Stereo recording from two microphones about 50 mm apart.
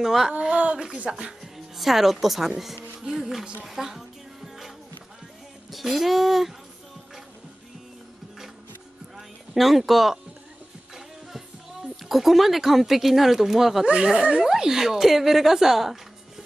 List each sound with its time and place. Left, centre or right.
0.0 s speech: centre
0.3 s a sound: right
1.1 s speech: centre
1.4 s a woman's voice: centre
2.6 s music: centre
3.6 s speech: centre
5.7 s a child's voice: centre
9.1 s a sound: centre
11.0 s speech: centre
13.8 s speech: centre
14.5 s speech: centre